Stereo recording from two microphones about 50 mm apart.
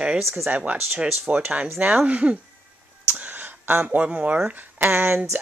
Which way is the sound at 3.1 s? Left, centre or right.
Right.